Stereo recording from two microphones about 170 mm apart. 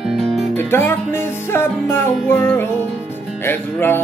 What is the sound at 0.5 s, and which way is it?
Music, 15° left (ahead or behind).